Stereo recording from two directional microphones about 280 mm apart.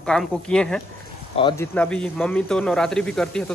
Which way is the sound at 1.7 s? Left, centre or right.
Centre.